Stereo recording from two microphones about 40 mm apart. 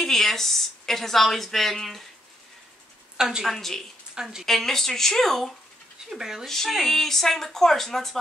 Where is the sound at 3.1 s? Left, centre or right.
Centre.